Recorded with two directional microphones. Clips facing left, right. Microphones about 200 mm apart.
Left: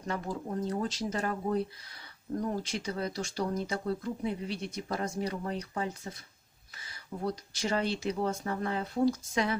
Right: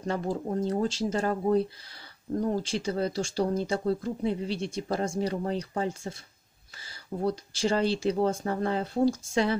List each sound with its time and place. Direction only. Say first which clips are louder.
0.0 s speech: right 5 dB; 30° right (ahead or behind)